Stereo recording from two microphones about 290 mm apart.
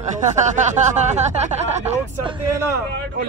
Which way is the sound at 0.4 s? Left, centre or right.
Right.